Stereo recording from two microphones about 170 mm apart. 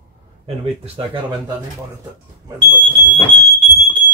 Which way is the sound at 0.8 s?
30° right (ahead or behind).